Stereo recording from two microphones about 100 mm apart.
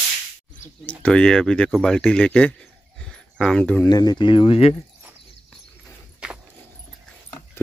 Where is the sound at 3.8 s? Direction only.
40° left (ahead or behind); by 4.7 s 60° left (ahead or behind).